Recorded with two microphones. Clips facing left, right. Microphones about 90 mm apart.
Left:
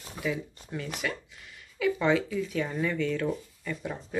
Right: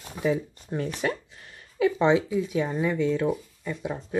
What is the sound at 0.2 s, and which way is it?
Speech, 35° right (ahead or behind).